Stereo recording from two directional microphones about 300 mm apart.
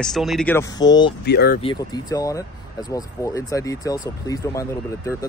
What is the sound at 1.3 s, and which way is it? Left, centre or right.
Speech, left.